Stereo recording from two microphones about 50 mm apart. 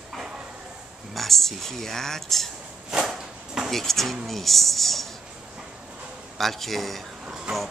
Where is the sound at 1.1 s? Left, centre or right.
Centre.